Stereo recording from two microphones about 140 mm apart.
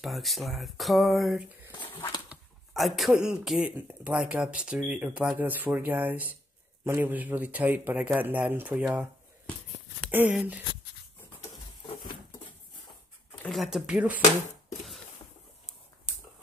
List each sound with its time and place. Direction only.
0.0 s speech: centre (ahead or behind)
1.9 s a sound: 15° left (ahead or behind)
2.2 s speech: centre (ahead or behind)
10.1 s speech: 10° right (ahead or behind)
13.5 s speech: centre (ahead or behind)